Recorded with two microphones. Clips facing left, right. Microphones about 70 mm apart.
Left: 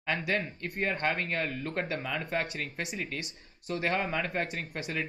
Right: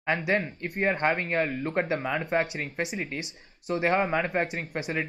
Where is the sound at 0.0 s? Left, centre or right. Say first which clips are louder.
Right 5 dB; right.